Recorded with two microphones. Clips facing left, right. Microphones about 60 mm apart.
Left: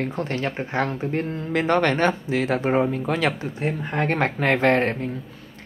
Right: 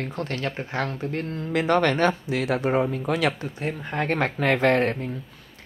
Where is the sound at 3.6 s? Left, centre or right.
Left.